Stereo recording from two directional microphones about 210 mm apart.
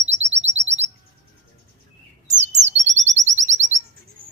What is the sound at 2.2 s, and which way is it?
Bird, 35° right (ahead or behind).